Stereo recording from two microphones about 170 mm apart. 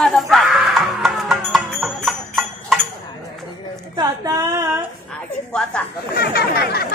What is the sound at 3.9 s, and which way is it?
Speech, 20° right (ahead or behind).